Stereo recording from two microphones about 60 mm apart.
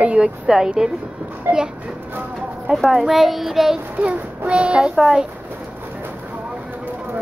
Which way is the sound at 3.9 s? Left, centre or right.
Right.